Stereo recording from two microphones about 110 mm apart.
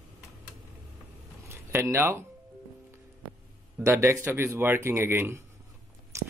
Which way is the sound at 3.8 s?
25° right (ahead or behind).